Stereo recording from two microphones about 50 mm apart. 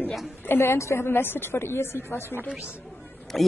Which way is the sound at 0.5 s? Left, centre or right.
Left.